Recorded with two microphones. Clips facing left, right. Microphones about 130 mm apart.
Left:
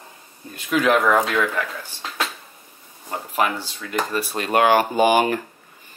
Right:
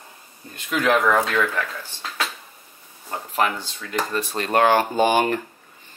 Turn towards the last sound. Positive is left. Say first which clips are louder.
# left 2 dB
turn(degrees=10)  # may be behind; listen again after turning